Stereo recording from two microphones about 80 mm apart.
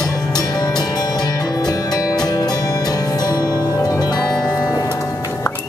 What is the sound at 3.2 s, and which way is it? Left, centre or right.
Music, left.